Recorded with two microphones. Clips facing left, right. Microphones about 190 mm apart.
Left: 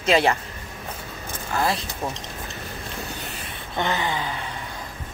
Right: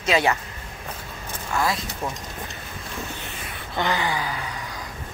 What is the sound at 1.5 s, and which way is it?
Speech, 30° left (ahead or behind).